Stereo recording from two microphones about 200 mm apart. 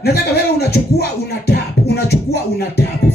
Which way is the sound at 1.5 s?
50° left (ahead or behind).